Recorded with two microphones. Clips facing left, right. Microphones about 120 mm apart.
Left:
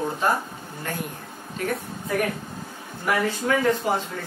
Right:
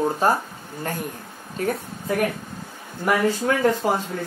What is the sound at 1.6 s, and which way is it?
Speech, 35° right (ahead or behind).